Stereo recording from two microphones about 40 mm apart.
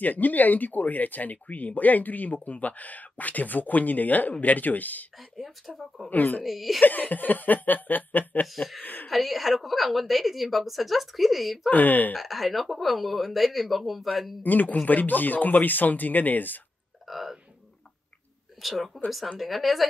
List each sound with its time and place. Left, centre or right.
0.0 s speech: left
5.7 s a woman's voice: centre
6.0 s speech: left
6.4 s a woman's voice: centre
6.8 s speech: left
8.8 s a sound: left
9.1 s a woman's voice: centre
11.7 s speech: left
12.2 s a woman's voice: centre
14.4 s speech: left
17.1 s a woman's voice: centre
18.6 s a woman's voice: centre